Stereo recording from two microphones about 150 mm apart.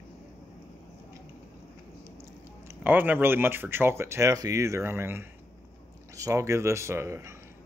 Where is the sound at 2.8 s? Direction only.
10° right (ahead or behind).